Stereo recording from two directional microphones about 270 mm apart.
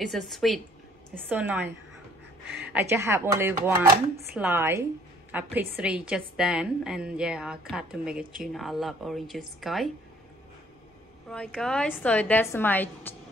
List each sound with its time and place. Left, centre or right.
0.0 s a woman's voice: centre
8.2 s speech: right
8.5 s a woman's voice: centre
11.2 s a woman's voice: centre